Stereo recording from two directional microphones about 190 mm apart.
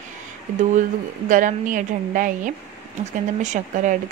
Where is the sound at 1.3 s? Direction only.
45° right (ahead or behind).